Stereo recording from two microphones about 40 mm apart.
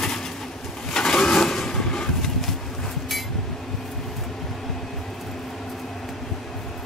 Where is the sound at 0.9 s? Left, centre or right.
Centre.